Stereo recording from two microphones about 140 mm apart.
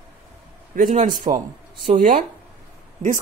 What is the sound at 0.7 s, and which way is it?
Speech, 65° right (ahead or behind).